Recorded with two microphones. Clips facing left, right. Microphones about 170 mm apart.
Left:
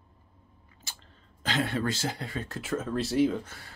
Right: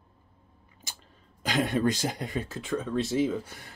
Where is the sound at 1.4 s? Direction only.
15° right (ahead or behind).